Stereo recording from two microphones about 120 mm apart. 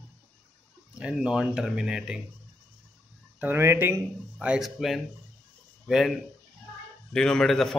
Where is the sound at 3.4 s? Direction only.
20° right (ahead or behind).